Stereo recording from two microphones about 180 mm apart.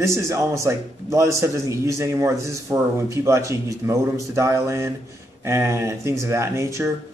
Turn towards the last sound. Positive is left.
turn(degrees=-15)  # may be behind; listen again after turning